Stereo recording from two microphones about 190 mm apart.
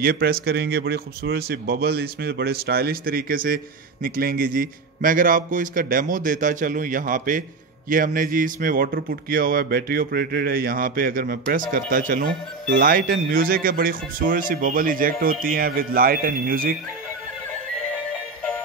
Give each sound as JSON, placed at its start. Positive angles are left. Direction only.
{"t": 0.0, "sound": "a man's voice", "side_deg": -50}
{"t": 17.5, "sound": "music", "side_deg": 5}